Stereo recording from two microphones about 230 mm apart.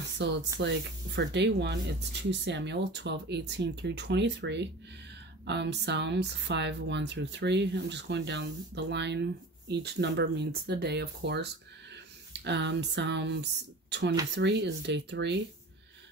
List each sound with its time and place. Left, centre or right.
0.2 s speech: right